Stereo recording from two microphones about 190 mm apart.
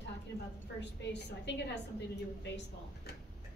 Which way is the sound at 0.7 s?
65° left (ahead or behind).